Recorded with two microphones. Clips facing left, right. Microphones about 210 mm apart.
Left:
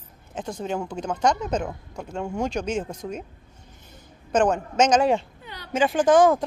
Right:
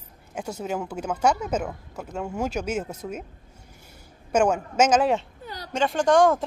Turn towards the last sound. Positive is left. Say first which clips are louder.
# left 2 dB
turn(degrees=0)  # may be behind; listen again after turning